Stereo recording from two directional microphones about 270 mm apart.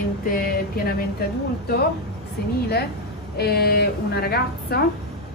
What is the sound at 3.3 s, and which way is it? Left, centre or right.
A woman's voice, left.